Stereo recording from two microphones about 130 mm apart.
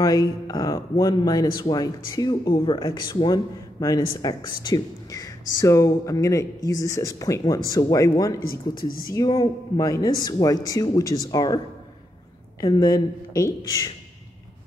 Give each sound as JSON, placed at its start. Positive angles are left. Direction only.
{"t": 0.5, "sound": "speech", "side_deg": 25}